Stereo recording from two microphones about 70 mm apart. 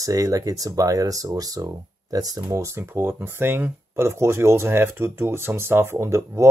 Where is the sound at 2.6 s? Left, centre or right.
Right.